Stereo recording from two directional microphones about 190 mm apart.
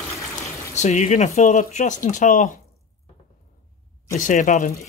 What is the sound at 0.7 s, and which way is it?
Speech, 40° left (ahead or behind).